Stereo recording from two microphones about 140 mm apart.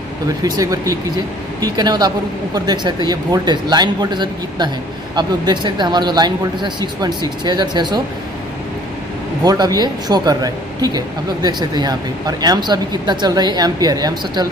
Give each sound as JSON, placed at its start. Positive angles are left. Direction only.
{"t": 0.4, "sound": "speech", "side_deg": -25}
{"t": 9.4, "sound": "speech", "side_deg": -25}